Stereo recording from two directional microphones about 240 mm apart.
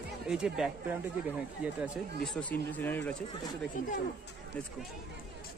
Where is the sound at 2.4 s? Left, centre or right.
Centre.